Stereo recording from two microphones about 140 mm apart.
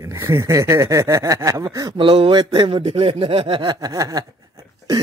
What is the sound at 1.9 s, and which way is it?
Speech, 40° right (ahead or behind).